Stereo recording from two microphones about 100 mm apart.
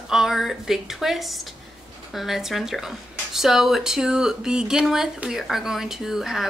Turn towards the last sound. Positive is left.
turn(degrees=0)  # may be behind; listen again after turning